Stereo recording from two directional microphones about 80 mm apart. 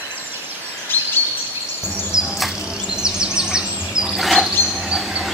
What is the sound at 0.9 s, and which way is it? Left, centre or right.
Bird vocalization, left.